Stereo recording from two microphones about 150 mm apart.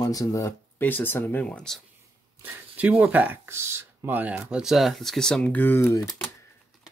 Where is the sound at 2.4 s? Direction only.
10° right (ahead or behind); by 6.1 s 20° left (ahead or behind).